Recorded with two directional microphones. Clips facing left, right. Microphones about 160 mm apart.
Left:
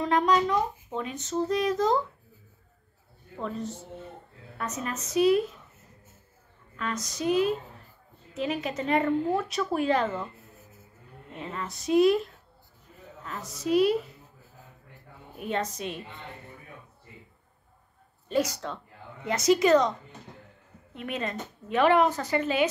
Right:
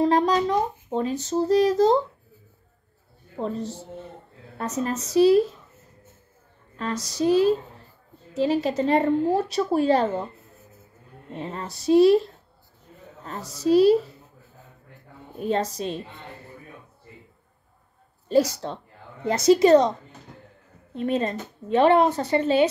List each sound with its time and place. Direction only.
0.0 s speech: 35° right (ahead or behind)
3.3 s speech: 35° right (ahead or behind)
6.8 s speech: 35° right (ahead or behind)
11.3 s speech: 35° right (ahead or behind)
15.3 s speech: 30° right (ahead or behind)
18.3 s speech: 30° right (ahead or behind)
20.9 s speech: 35° right (ahead or behind)